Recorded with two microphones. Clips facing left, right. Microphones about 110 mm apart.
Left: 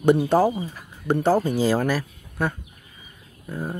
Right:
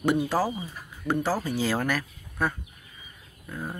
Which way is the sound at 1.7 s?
35° left (ahead or behind).